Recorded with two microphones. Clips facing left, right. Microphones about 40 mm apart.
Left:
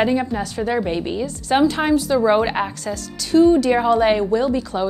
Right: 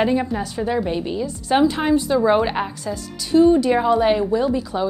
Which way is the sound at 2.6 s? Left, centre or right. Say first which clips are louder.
Left 2 dB; left.